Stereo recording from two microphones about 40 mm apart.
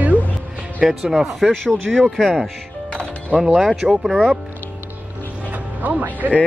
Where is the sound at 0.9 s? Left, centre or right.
Centre.